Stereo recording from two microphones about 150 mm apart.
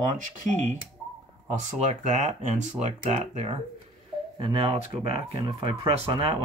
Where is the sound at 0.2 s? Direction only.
55° right (ahead or behind).